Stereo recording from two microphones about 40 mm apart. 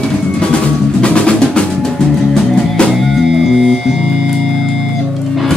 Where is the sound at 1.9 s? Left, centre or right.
Centre.